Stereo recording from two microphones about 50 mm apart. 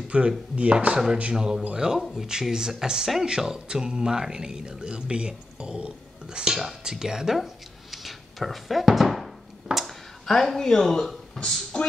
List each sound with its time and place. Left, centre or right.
0.1 s chopping: right
1.3 s speech: centre